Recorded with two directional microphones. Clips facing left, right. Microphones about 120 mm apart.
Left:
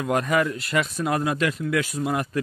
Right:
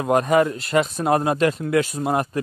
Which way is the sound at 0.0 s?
30° right (ahead or behind).